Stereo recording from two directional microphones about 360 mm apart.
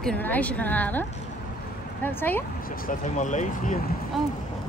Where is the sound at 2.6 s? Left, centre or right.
Left.